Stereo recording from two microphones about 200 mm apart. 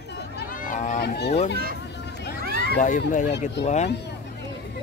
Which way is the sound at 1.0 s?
55° left (ahead or behind).